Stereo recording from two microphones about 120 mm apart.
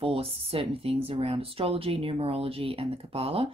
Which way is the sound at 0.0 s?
50° right (ahead or behind).